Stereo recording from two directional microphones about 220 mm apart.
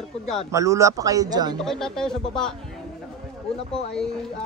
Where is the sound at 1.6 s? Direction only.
Centre (ahead or behind).